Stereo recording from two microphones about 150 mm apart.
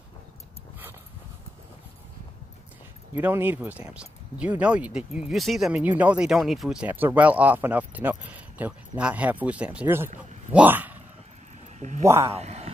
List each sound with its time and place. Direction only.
3.2 s speech: 15° right (ahead or behind)
11.8 s speech: 50° right (ahead or behind)
12.3 s a sound: 45° right (ahead or behind)